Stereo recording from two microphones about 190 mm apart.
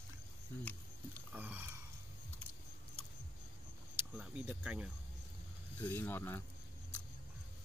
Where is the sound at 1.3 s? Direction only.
10° right (ahead or behind).